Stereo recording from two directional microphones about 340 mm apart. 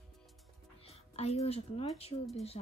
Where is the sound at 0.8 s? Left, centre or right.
Centre.